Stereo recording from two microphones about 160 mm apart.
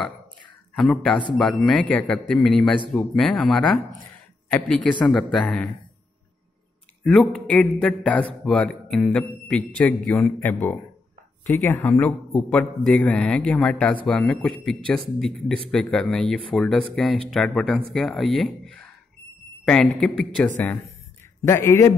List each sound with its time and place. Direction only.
0.7 s a man's voice: 5° left (ahead or behind)
7.0 s a man's voice: 5° left (ahead or behind)
21.5 s speech: 15° left (ahead or behind)